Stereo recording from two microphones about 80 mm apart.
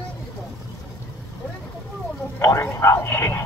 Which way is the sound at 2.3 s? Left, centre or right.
Left.